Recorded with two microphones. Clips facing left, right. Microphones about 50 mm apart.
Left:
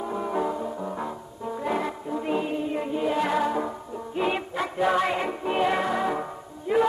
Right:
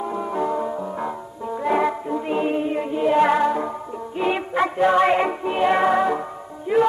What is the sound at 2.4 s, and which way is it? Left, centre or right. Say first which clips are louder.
Music: right 6 dB; right.